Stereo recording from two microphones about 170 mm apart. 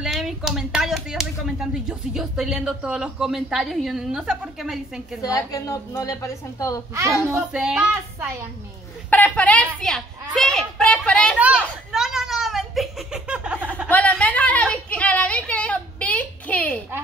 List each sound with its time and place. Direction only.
0.0 s speech: 5° right (ahead or behind)
5.2 s a woman's voice: 20° left (ahead or behind)
7.2 s speech: 10° right (ahead or behind)
9.1 s a woman's voice: 10° left (ahead or behind)
11.3 s a sound: 10° right (ahead or behind)
13.8 s a sound: 10° left (ahead or behind)